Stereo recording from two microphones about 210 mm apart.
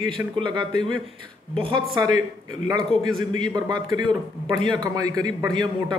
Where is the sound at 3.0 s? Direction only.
20° right (ahead or behind).